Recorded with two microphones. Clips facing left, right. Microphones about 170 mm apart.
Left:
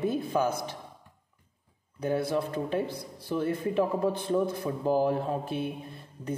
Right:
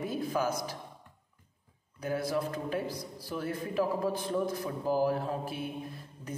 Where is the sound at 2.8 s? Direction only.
60° left (ahead or behind).